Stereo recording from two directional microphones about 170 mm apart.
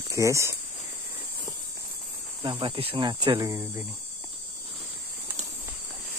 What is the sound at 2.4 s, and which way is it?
Speech, 30° right (ahead or behind).